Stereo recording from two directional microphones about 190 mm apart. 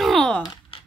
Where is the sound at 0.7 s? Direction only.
30° left (ahead or behind).